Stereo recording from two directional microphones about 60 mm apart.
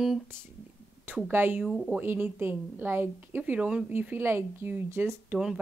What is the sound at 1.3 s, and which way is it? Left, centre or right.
Speech, right.